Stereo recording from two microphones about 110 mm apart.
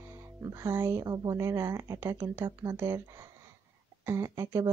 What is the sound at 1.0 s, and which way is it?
A woman's voice, 30° right (ahead or behind).